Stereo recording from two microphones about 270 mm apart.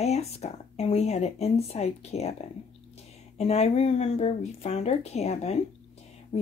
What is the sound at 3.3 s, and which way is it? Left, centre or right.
Speech, left.